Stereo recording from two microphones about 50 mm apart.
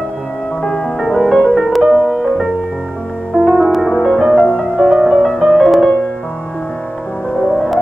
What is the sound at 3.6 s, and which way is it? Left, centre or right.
Music, centre.